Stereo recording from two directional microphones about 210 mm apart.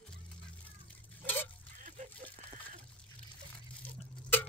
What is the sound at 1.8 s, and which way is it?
Water, 40° right (ahead or behind).